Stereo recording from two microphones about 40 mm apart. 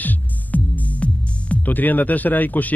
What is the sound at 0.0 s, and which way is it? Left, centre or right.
Music, left.